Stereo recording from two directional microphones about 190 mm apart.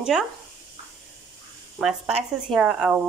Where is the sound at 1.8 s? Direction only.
Centre (ahead or behind).